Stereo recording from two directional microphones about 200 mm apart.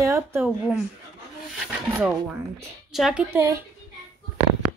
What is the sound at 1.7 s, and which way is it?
Rub, 5° right (ahead or behind).